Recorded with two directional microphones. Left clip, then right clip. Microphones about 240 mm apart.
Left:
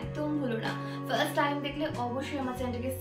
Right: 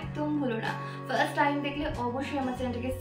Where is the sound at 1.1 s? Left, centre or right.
Centre.